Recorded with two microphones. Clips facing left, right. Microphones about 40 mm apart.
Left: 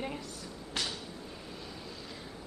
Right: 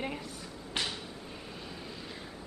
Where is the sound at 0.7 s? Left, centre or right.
Right.